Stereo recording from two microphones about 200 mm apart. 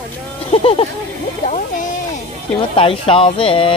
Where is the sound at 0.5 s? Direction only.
30° left (ahead or behind).